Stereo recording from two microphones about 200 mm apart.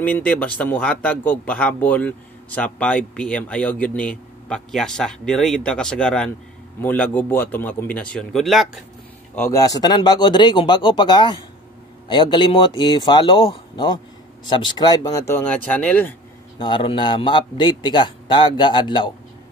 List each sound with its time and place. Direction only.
0.0 s a man's voice: 5° left (ahead or behind)
9.3 s a man's voice: 15° left (ahead or behind)
16.5 s a man's voice: 25° left (ahead or behind)